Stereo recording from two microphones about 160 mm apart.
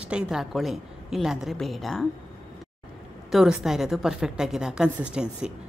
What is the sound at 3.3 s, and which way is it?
A woman's voice, centre (ahead or behind).